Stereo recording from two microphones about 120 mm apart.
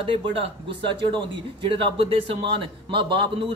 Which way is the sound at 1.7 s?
50° right (ahead or behind).